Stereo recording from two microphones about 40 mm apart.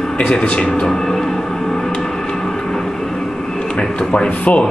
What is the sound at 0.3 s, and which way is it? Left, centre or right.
Speech, centre.